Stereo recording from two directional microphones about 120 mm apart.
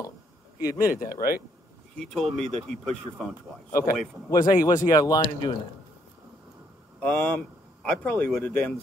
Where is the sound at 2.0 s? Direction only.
Centre (ahead or behind).